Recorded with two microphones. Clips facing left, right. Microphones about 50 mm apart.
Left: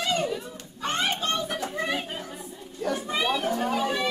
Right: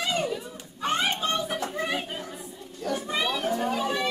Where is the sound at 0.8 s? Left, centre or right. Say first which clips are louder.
Right 1 dB; centre.